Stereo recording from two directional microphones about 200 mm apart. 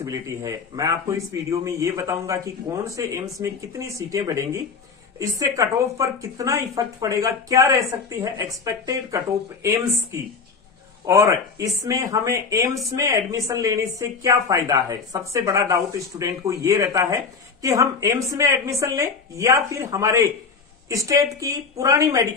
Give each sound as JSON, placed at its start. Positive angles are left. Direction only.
{"t": 0.0, "sound": "speech", "side_deg": -15}